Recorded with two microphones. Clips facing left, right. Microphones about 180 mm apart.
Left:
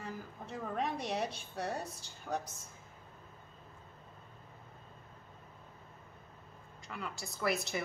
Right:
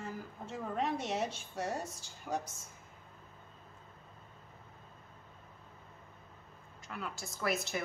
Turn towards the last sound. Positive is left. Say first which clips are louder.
# left 1 dB
turn(degrees=0)  # may be behind; listen again after turning